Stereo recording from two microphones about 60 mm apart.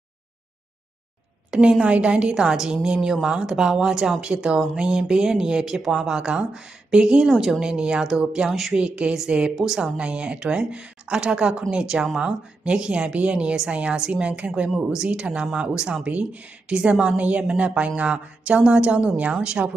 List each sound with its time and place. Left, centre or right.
1.5 s a woman's voice: centre
8.7 s a woman's voice: centre
9.9 s a woman's voice: centre